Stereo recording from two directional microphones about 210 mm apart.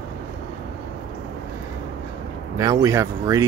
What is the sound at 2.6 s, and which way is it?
Speech, 15° right (ahead or behind).